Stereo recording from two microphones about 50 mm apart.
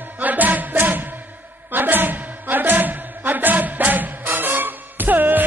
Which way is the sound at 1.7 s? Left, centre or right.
Right.